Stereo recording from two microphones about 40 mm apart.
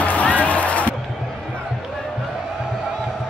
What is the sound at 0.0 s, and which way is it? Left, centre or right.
Music, left.